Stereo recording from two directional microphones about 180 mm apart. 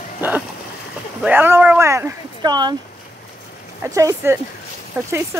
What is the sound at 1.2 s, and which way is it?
Speech, 10° right (ahead or behind).